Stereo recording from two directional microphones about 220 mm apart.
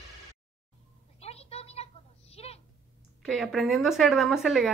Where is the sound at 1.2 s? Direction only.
30° left (ahead or behind).